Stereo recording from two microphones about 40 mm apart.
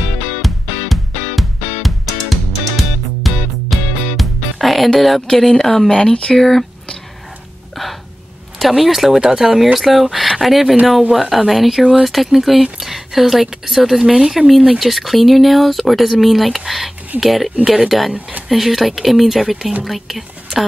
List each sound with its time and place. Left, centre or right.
0.4 s music: centre
5.3 s speech: centre
6.3 s speech: centre
7.7 s gasp: centre
8.5 s speech: centre